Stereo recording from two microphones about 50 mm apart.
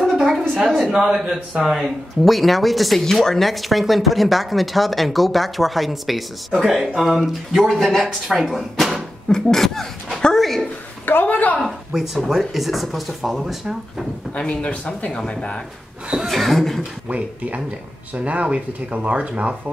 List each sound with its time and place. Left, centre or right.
0.0 s a woman's voice: centre
11.1 s a woman's voice: left
11.9 s speech: centre
14.4 s speech: left
16.3 s speech: centre
18.1 s speech: right